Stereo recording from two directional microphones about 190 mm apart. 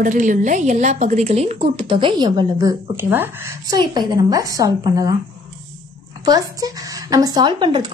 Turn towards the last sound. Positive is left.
turn(degrees=-25)  # may be behind; listen again after turning